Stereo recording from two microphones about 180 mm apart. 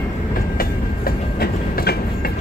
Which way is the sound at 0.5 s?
55° left (ahead or behind).